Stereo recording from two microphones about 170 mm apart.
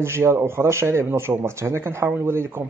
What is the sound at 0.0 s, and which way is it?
Speech, 15° right (ahead or behind).